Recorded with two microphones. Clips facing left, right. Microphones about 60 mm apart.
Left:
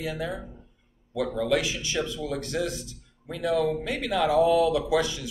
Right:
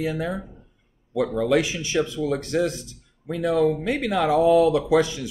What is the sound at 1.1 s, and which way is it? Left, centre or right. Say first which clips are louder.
Speech: right 5 dB; right.